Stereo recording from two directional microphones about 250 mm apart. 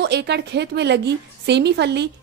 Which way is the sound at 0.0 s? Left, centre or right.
Right.